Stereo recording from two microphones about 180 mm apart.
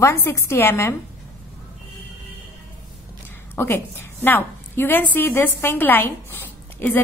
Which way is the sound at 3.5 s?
10° left (ahead or behind).